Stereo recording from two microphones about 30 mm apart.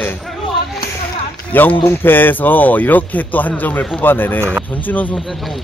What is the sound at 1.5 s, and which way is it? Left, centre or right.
Speech, left.